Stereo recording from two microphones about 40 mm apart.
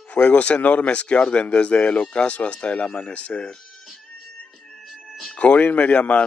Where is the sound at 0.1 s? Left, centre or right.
Left.